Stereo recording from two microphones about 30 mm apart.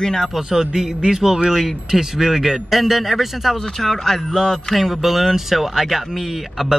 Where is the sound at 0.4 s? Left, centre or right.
Centre.